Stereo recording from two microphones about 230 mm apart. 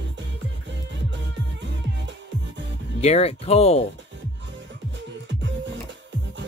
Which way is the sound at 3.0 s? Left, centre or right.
Left.